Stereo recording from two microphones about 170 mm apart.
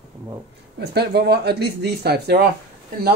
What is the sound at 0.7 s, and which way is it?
Speech, 75° right (ahead or behind).